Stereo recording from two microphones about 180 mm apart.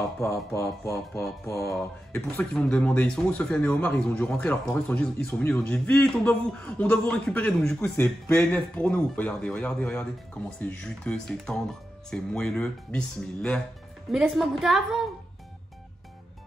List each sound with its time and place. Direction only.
0.2 s a man's voice: 15° left (ahead or behind); by 15.0 s centre (ahead or behind)